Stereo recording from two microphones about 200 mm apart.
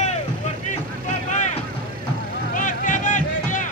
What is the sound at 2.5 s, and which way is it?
Vehicle, 40° left (ahead or behind).